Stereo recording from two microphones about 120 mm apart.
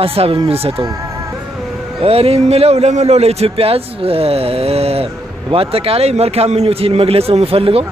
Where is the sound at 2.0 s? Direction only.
55° right (ahead or behind).